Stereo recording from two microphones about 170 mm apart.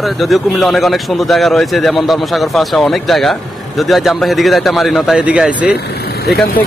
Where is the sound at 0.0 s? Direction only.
Centre (ahead or behind).